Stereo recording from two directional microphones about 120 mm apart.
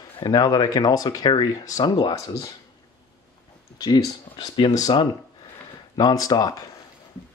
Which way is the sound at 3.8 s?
35° left (ahead or behind).